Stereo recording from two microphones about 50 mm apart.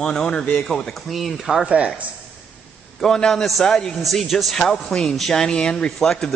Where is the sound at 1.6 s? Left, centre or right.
Right.